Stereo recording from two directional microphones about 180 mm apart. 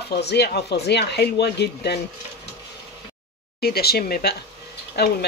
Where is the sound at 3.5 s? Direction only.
60° left (ahead or behind).